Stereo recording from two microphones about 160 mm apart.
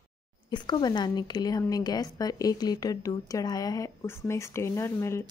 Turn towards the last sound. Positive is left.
turn(degrees=15)  # may be behind; listen again after turning